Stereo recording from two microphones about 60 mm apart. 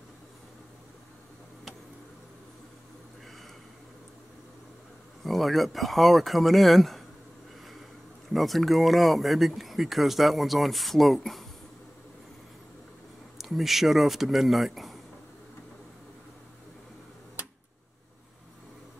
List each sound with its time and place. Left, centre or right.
5.2 s speech: centre
8.3 s speech: centre
13.4 s speech: centre
17.4 s a sound: right